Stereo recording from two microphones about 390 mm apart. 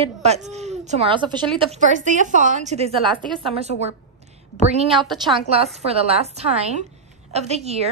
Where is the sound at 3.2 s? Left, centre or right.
Centre.